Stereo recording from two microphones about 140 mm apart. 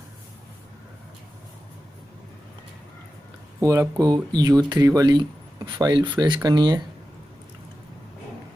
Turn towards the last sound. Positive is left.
turn(degrees=-30)  # may be behind; listen again after turning